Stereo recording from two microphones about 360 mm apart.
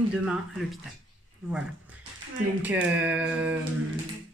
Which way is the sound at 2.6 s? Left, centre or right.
Centre.